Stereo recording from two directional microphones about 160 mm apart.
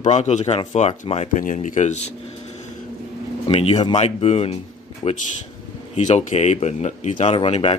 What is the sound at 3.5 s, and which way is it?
Speech, 40° left (ahead or behind).